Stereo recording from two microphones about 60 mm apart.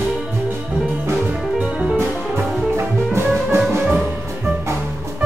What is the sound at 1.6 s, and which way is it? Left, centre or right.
Music, centre.